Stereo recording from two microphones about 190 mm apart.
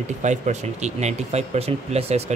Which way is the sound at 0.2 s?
40° right (ahead or behind).